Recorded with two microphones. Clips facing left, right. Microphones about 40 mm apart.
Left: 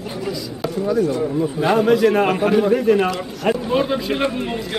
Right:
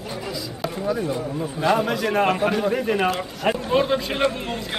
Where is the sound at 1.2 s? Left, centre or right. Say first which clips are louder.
Left 4 dB; centre.